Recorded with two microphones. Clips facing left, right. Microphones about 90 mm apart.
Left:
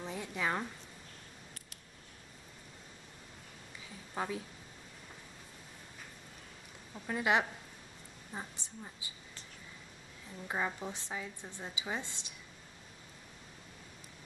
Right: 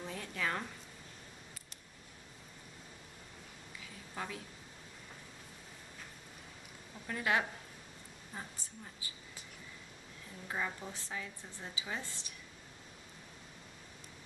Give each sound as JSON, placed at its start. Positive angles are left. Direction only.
{"t": 0.0, "sound": "a sound", "side_deg": 15}
{"t": 4.1, "sound": "a woman's voice", "side_deg": 25}
{"t": 7.1, "sound": "a woman's voice", "side_deg": 20}
{"t": 10.5, "sound": "a woman's voice", "side_deg": 20}